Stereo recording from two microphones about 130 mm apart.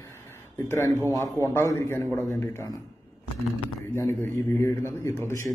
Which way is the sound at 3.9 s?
20° left (ahead or behind).